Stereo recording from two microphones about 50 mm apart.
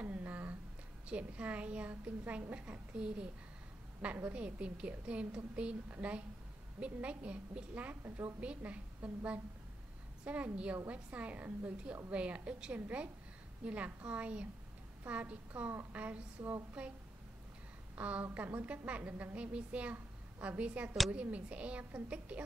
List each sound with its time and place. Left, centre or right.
0.0 s a sound: right
1.0 s a woman's voice: right
2.9 s a woman's voice: centre; by 8.3 s right
8.4 s a woman's voice: right
16.8 s speech: centre
17.9 s a woman's voice: right